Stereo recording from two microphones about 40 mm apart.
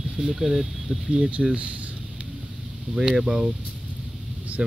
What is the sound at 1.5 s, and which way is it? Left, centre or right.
Speech, right.